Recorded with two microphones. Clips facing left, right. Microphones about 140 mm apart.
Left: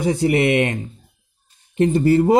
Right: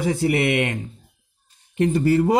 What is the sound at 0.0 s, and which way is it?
Speech, 20° left (ahead or behind).